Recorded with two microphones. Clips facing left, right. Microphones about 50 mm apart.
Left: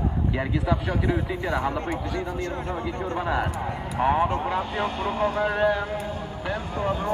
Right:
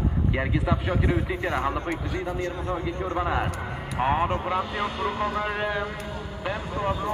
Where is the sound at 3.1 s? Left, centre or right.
Centre.